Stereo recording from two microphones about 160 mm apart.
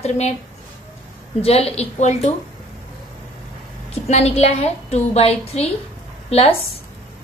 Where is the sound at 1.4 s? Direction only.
40° left (ahead or behind).